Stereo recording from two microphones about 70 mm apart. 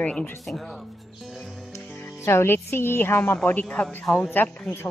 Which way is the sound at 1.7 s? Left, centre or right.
Left.